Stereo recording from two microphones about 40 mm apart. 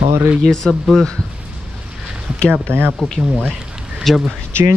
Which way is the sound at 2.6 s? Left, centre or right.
Right.